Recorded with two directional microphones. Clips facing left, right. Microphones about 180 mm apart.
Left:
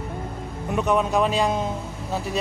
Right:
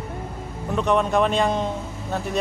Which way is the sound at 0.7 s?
5° left (ahead or behind).